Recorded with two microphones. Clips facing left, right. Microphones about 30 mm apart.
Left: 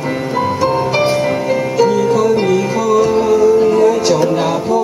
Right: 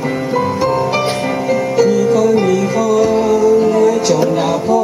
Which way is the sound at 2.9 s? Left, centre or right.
Centre.